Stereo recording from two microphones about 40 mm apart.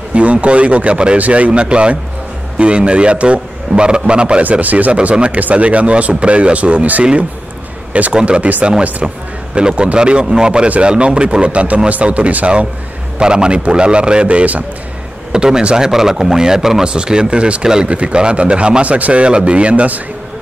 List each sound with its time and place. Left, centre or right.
0.1 s a man's voice: right
4.4 s speech: right
5.1 s a man's voice: right
8.1 s a man's voice: right
8.4 s speech: right
9.6 s a man's voice: right
13.2 s a man's voice: right
14.2 s speech: right
15.3 s a man's voice: right
16.8 s a man's voice: right
19.2 s speech: right